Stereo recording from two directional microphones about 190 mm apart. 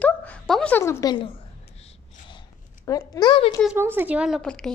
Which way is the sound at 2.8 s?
20° left (ahead or behind).